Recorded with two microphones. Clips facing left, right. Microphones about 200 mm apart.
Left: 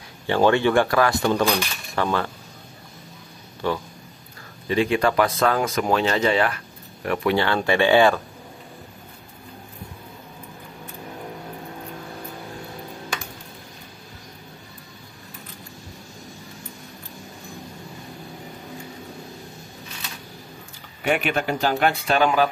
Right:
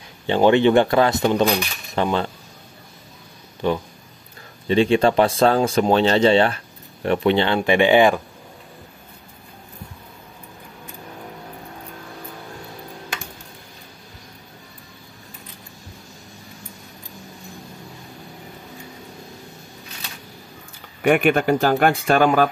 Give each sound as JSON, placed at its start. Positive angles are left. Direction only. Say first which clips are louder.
{"t": 0.3, "sound": "speech", "louder": "right 3 dB", "side_deg": -20}
{"t": 3.6, "sound": "speech", "louder": "right 3 dB", "side_deg": -15}
{"t": 21.0, "sound": "speech", "louder": "right 6 dB", "side_deg": -50}